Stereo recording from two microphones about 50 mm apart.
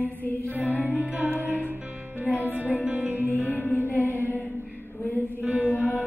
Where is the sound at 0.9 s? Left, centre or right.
Right.